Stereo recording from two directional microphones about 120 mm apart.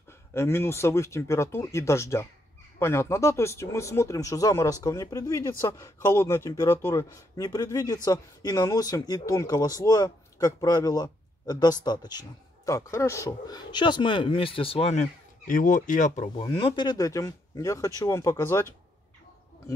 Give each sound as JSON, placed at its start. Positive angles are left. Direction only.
{"t": 0.3, "sound": "speech", "side_deg": 20}
{"t": 13.7, "sound": "speech", "side_deg": 40}
{"t": 16.3, "sound": "speech", "side_deg": 50}